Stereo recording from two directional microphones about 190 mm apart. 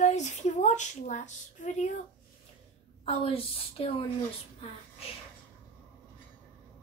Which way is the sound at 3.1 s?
30° left (ahead or behind).